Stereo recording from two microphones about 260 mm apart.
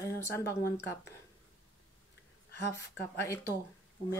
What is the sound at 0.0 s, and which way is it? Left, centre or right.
Speech, centre.